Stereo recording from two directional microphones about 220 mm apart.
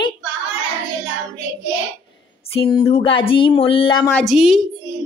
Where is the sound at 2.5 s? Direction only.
25° left (ahead or behind).